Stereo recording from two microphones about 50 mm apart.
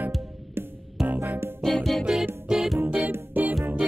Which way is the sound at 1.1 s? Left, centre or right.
Right.